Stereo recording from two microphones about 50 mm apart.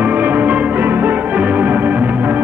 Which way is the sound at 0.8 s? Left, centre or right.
Right.